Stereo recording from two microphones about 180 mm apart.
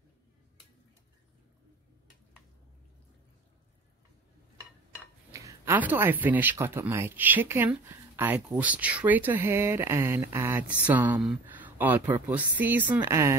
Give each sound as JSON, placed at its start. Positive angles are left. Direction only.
{"t": 5.3, "sound": "speech", "side_deg": -15}